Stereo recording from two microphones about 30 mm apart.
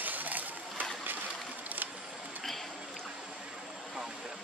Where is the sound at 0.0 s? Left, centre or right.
Right.